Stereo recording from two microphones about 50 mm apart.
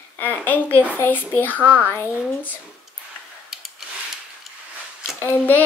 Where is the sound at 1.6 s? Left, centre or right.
Right.